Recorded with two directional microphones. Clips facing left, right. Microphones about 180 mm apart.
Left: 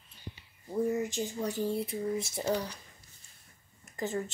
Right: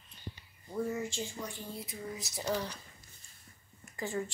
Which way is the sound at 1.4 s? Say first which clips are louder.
Left 10 dB; 30° left (ahead or behind).